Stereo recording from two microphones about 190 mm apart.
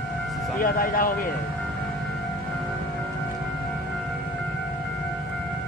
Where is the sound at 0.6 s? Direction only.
45° left (ahead or behind).